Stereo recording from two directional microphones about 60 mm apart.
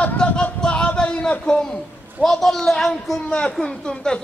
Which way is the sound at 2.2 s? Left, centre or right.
Centre.